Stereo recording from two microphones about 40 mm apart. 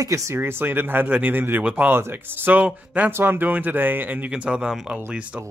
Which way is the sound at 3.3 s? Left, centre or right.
Right.